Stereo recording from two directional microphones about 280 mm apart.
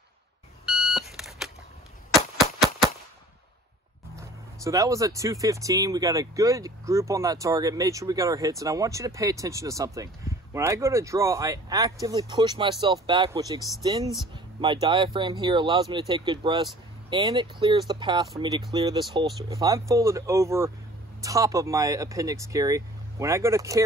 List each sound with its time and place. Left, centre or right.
0.7 s beep: centre
4.2 s speech: centre